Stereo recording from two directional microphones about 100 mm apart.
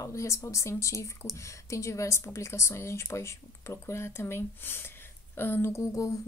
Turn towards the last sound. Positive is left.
turn(degrees=35)  # may be behind; listen again after turning